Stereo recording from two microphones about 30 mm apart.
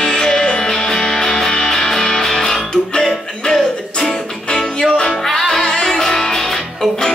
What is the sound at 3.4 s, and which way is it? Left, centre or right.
Music, left.